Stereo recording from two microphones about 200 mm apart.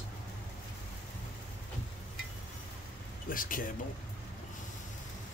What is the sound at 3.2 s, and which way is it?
Speech, 45° left (ahead or behind).